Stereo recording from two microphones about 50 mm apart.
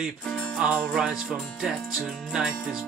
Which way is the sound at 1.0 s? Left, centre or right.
Centre.